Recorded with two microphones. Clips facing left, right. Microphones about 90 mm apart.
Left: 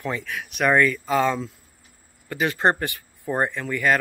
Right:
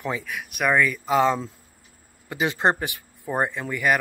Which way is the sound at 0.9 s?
20° right (ahead or behind).